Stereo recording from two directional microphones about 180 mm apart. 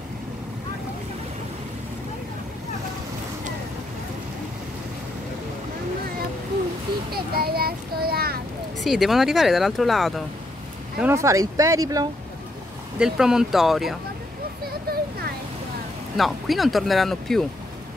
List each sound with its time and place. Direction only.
7.1 s a sound: 60° right (ahead or behind)
8.8 s speech: centre (ahead or behind)
11.0 s speech: 15° right (ahead or behind)
13.0 s speech: 5° right (ahead or behind)
14.7 s a sound: 60° right (ahead or behind)
16.2 s speech: centre (ahead or behind)